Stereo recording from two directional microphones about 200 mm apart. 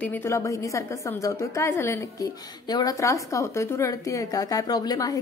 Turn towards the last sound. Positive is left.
turn(degrees=20)  # may be behind; listen again after turning